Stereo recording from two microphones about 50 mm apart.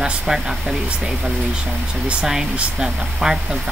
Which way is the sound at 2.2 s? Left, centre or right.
Centre.